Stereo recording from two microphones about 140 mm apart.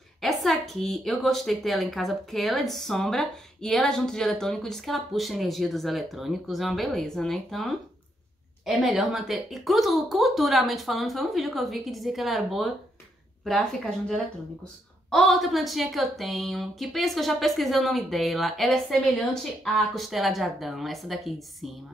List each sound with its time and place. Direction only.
0.2 s a woman's voice: centre (ahead or behind)